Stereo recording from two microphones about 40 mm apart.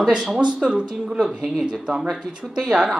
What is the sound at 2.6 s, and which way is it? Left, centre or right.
Speech, right.